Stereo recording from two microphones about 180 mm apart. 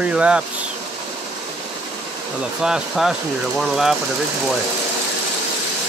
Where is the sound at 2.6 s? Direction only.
5° right (ahead or behind).